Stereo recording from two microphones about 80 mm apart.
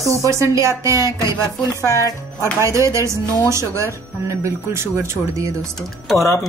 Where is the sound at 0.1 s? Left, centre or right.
Right.